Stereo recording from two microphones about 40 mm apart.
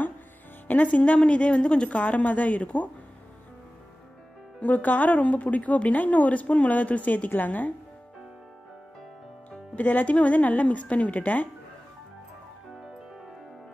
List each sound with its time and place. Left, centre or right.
0.7 s speech: left
4.6 s speech: left
9.5 s speech: left